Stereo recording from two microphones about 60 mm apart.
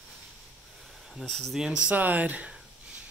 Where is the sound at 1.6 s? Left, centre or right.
Centre.